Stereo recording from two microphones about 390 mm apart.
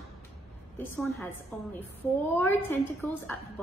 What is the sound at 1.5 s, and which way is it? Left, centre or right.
A woman's voice, centre.